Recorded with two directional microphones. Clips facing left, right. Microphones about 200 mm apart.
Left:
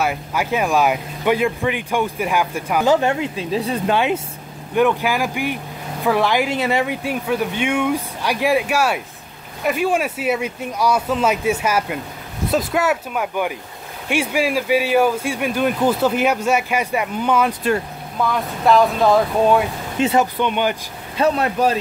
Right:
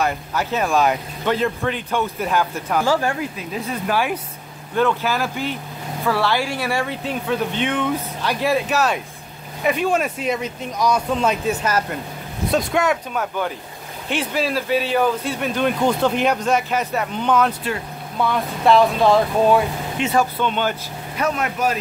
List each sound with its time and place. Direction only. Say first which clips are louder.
0.0 s speech: left 1 dB; 10° left (ahead or behind)
20.2 s speech: right 1 dB; 15° left (ahead or behind)
21.2 s speech: left 5 dB; 30° left (ahead or behind)